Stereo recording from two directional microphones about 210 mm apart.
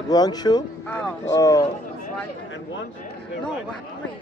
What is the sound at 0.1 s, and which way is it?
Speech, 20° left (ahead or behind).